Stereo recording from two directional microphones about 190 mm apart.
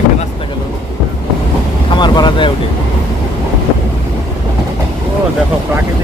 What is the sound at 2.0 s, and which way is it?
Vehicle, 25° left (ahead or behind).